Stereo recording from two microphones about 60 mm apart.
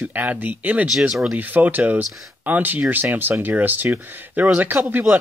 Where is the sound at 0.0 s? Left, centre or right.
Right.